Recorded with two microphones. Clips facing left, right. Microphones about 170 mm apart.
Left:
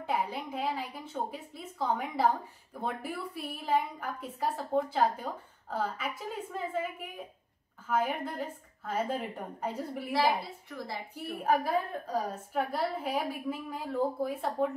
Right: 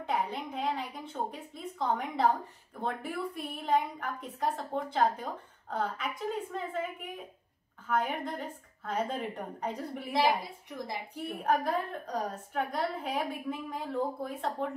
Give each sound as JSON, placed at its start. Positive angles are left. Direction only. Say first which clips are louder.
{"t": 0.0, "sound": "a woman's voice", "louder": "even", "side_deg": 5}
{"t": 10.1, "sound": "a woman's voice", "louder": "right 1 dB", "side_deg": -20}
{"t": 11.2, "sound": "a woman's voice", "louder": "left 1 dB", "side_deg": 5}